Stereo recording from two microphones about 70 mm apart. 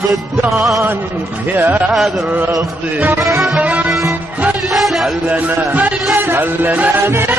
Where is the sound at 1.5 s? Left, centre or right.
Right.